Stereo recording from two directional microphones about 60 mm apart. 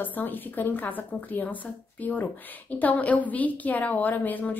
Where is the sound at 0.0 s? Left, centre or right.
Left.